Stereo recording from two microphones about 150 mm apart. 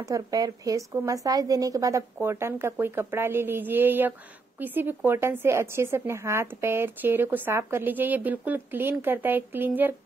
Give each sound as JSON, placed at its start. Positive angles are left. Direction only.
{"t": 0.0, "sound": "speech", "side_deg": -25}